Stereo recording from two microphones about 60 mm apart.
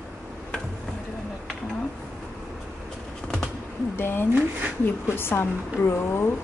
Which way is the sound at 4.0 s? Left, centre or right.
Left.